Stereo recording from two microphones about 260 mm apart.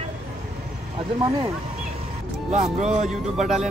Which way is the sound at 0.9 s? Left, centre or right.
Right.